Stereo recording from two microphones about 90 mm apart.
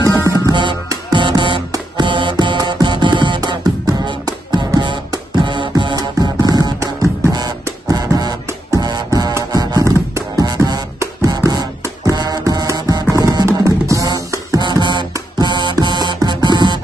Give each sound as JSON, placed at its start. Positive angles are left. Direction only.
{"t": 0.5, "sound": "music", "side_deg": -60}
{"t": 5.9, "sound": "music", "side_deg": -45}
{"t": 6.8, "sound": "music", "side_deg": -35}
{"t": 13.5, "sound": "music", "side_deg": -35}
{"t": 14.6, "sound": "music", "side_deg": -55}